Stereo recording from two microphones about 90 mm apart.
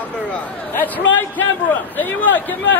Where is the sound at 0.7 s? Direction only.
20° left (ahead or behind).